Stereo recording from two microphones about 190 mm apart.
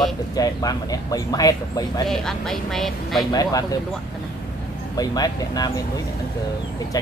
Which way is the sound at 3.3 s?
20° left (ahead or behind).